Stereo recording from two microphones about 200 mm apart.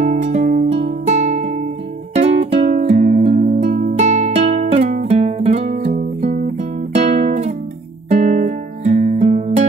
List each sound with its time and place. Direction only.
0.0 s music: 35° right (ahead or behind)